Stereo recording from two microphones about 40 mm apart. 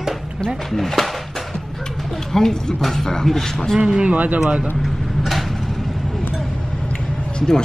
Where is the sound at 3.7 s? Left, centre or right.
Right.